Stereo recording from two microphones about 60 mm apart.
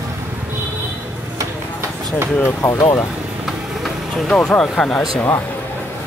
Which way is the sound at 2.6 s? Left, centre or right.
Left.